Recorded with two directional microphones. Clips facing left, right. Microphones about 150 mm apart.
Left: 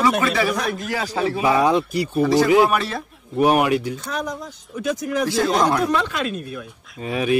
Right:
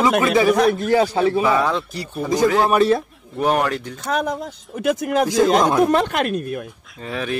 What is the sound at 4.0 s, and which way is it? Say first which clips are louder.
Speech: right 5 dB; 60° right (ahead or behind).